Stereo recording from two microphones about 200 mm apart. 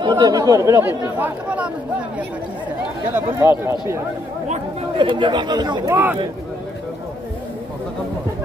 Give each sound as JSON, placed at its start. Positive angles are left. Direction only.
{"t": 0.0, "sound": "speech", "side_deg": -20}
{"t": 3.2, "sound": "speech", "side_deg": -10}
{"t": 4.9, "sound": "speech", "side_deg": -25}